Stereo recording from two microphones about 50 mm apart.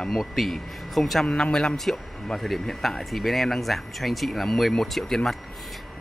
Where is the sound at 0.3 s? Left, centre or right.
Centre.